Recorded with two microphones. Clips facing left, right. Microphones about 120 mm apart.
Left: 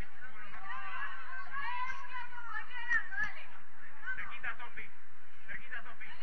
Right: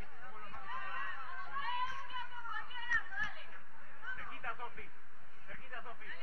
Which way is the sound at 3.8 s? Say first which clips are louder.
Left 3 dB; 40° right (ahead or behind).